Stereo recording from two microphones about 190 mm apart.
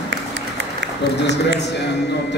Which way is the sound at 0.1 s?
70° right (ahead or behind).